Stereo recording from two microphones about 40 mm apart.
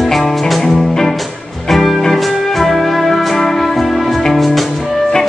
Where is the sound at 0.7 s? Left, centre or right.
Centre.